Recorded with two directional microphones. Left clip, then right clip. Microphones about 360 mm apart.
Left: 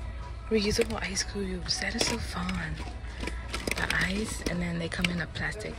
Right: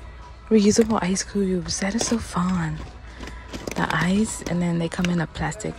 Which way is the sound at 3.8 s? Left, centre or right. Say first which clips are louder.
Right 7 dB; centre.